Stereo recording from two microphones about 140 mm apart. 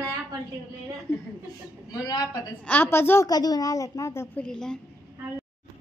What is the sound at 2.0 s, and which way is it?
Speech, 25° left (ahead or behind).